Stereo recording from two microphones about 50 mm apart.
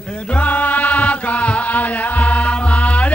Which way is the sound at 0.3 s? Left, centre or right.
Left.